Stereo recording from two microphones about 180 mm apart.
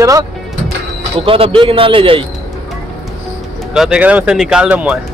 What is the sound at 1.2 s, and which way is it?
A man's voice, 30° right (ahead or behind).